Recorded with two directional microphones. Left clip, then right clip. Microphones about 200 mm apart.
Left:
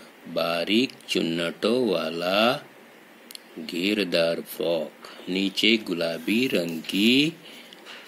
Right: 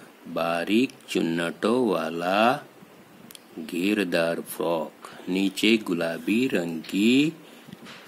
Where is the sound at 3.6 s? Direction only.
5° right (ahead or behind).